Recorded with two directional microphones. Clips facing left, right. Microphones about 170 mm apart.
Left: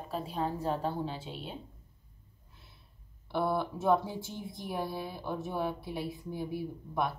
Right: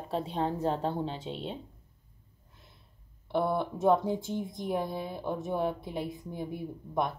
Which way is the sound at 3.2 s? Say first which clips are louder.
Right 2 dB; 20° right (ahead or behind).